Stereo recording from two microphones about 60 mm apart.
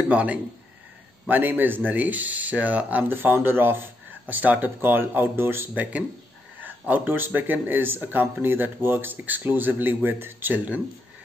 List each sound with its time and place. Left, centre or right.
0.1 s speech: right